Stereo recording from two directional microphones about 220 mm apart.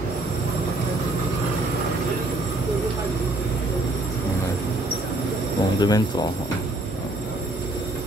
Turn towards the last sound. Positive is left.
turn(degrees=15)  # may be behind; listen again after turning